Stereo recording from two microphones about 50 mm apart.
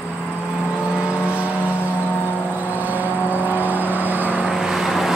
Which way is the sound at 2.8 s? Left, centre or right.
Right.